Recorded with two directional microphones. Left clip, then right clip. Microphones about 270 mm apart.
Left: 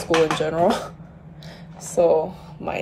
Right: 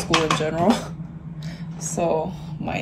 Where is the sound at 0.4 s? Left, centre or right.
Left.